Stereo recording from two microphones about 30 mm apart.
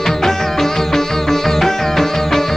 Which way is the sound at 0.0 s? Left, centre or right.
Centre.